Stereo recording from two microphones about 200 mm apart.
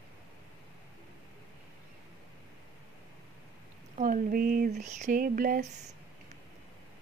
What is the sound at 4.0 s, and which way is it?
Speech, 45° right (ahead or behind).